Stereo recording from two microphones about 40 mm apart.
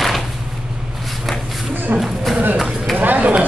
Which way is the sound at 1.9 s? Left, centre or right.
Right.